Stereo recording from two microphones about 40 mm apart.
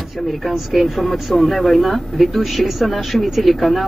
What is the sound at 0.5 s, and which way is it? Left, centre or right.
Speech, centre.